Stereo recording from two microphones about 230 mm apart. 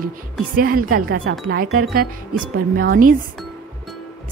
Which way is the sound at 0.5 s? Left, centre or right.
Right.